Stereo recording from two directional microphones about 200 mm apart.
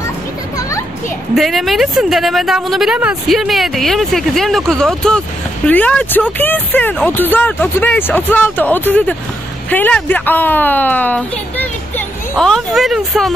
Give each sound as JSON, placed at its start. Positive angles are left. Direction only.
{"t": 0.6, "sound": "children playing", "side_deg": 15}
{"t": 1.3, "sound": "a woman's voice", "side_deg": 0}